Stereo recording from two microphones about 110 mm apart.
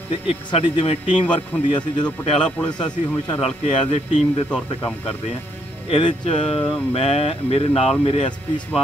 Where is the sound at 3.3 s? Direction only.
65° left (ahead or behind).